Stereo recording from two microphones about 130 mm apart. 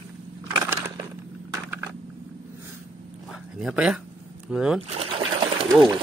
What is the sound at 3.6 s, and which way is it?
Speech, 5° right (ahead or behind).